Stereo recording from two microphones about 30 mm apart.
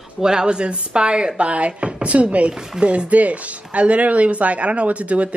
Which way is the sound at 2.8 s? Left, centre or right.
Right.